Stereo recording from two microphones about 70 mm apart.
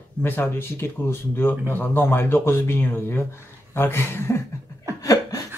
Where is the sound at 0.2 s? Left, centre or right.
Left.